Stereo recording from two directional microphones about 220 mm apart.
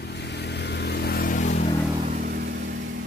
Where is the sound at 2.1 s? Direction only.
45° right (ahead or behind).